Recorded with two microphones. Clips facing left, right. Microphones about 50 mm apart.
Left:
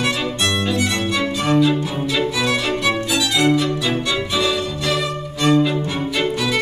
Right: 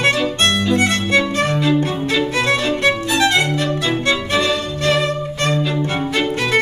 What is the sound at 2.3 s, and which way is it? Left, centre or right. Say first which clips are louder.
Music: right 2 dB; right.